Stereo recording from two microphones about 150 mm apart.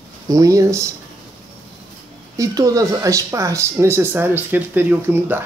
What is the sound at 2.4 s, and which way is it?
Speech, 25° right (ahead or behind).